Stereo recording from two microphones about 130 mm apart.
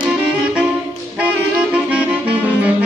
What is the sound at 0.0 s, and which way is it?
Saxophone, 10° right (ahead or behind).